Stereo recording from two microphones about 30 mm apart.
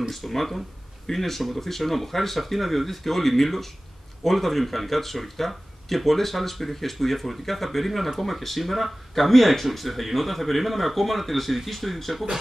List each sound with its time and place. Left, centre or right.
0.1 s speech: centre